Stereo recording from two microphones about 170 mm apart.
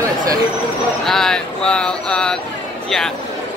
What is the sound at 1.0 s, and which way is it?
Speech, 5° left (ahead or behind).